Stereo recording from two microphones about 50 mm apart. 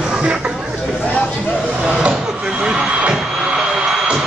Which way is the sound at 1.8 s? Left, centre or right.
Centre.